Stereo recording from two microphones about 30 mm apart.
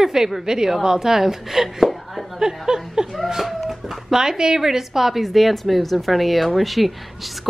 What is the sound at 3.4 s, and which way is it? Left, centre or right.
Speech, centre.